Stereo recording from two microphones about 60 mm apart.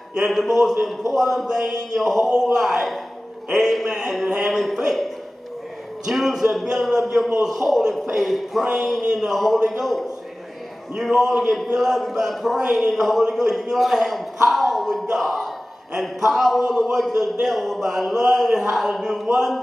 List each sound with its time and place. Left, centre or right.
0.3 s speech: centre
6.0 s a man's voice: centre
15.1 s a sound: centre
16.3 s a man's voice: centre